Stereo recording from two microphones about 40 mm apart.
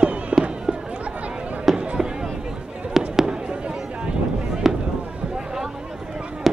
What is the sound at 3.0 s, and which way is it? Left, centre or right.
Fireworks, centre.